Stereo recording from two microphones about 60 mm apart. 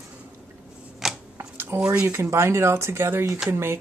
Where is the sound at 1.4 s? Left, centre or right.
Right.